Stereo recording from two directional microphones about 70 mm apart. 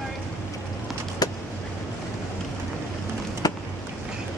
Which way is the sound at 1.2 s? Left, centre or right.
Left.